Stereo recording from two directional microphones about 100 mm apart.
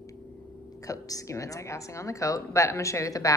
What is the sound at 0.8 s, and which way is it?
A woman's voice, 35° left (ahead or behind).